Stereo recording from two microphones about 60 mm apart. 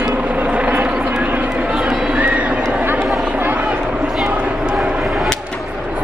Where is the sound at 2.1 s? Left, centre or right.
Right.